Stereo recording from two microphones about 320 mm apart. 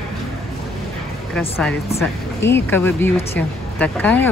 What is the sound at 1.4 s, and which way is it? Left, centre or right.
Speech, centre.